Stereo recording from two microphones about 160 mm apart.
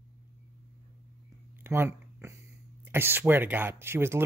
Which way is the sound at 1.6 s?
15° right (ahead or behind).